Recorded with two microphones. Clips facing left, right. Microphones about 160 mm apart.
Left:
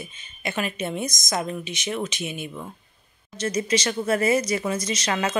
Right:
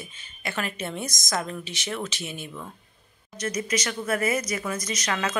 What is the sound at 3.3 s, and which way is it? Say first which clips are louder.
Speech: left 4 dB; 30° left (ahead or behind).